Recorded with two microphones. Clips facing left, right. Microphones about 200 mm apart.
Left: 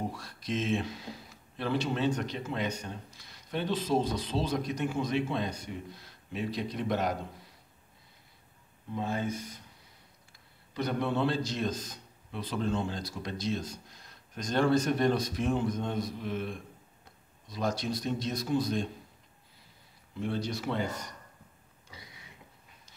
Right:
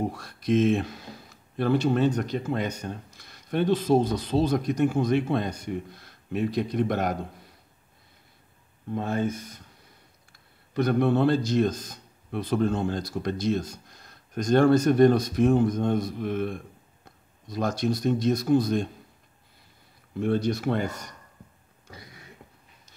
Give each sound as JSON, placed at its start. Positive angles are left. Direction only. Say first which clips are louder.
{"t": 0.1, "sound": "a man's voice", "louder": "right 10 dB", "side_deg": -55}
{"t": 8.9, "sound": "a man's voice", "louder": "right 5 dB", "side_deg": -55}
{"t": 10.7, "sound": "a man's voice", "louder": "right 8 dB", "side_deg": -55}
{"t": 20.2, "sound": "a man's voice", "louder": "right 8 dB", "side_deg": -55}
{"t": 21.8, "sound": "a sound", "louder": "right 6 dB", "side_deg": -50}